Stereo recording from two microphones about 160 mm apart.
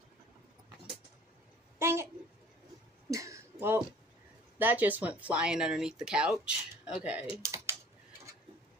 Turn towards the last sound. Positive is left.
turn(degrees=-15)  # may be behind; listen again after turning